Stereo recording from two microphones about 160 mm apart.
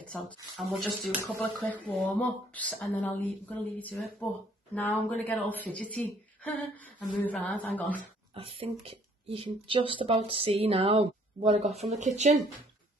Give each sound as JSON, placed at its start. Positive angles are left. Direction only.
{"t": 0.6, "sound": "speech", "side_deg": 0}
{"t": 8.4, "sound": "speech", "side_deg": -35}